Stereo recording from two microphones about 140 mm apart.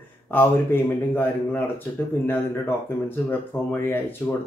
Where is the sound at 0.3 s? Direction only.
15° left (ahead or behind).